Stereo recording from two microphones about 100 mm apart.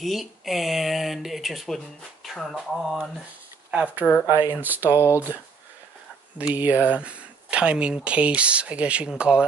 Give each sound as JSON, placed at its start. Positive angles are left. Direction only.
{"t": 0.0, "sound": "speech", "side_deg": 0}
{"t": 2.2, "sound": "a sound", "side_deg": 0}
{"t": 2.5, "sound": "speech", "side_deg": -5}
{"t": 3.7, "sound": "speech", "side_deg": -15}
{"t": 4.9, "sound": "speech", "side_deg": 25}
{"t": 6.3, "sound": "speech", "side_deg": -15}